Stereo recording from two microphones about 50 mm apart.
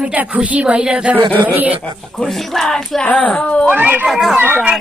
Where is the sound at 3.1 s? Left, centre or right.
Left.